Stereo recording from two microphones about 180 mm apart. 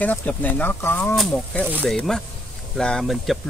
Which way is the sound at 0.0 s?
10° left (ahead or behind).